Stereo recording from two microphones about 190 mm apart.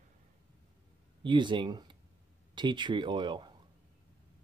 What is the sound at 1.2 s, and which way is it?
Speech, 25° right (ahead or behind).